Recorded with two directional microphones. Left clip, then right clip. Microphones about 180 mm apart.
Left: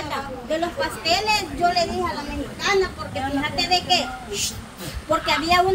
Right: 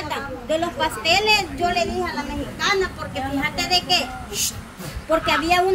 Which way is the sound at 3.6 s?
70° right (ahead or behind).